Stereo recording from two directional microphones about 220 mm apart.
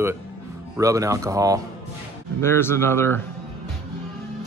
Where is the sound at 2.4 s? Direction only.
10° left (ahead or behind).